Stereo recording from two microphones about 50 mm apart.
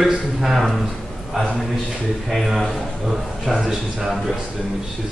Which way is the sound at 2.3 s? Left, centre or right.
Centre.